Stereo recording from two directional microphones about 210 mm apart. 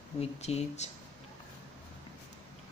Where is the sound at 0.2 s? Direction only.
30° left (ahead or behind).